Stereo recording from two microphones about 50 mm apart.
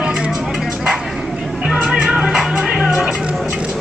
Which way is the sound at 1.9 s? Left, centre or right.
Centre.